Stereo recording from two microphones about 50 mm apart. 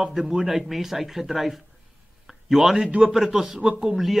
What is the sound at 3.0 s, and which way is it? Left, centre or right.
A man's voice, centre.